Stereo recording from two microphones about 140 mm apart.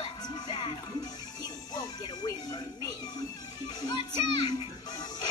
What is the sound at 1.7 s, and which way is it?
Music, 25° left (ahead or behind).